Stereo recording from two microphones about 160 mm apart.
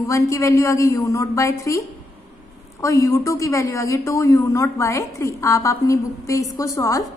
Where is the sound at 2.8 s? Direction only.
20° left (ahead or behind).